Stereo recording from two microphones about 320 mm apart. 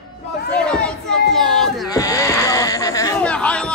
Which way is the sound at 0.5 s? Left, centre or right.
Centre.